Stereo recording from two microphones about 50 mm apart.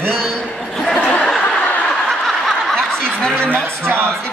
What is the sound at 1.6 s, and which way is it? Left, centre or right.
Snicker, left.